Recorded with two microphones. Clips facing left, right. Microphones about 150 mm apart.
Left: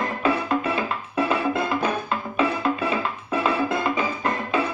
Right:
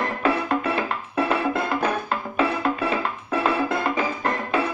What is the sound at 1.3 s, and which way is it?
Music, 20° left (ahead or behind).